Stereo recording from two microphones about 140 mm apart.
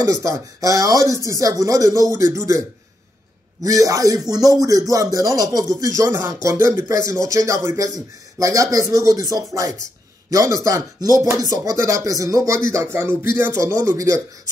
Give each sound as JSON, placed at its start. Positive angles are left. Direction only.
{"t": 0.0, "sound": "speech", "side_deg": -25}
{"t": 3.6, "sound": "speech", "side_deg": -25}